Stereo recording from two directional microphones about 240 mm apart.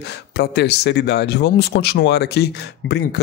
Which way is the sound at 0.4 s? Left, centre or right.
Left.